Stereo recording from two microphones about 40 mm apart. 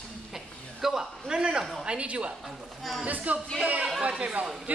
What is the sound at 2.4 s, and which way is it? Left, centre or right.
Speech, centre.